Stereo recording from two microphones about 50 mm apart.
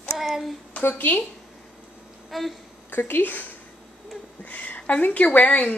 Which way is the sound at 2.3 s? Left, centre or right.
Centre.